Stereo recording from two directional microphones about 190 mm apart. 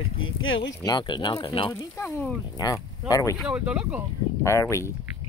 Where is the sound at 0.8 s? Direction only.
25° left (ahead or behind).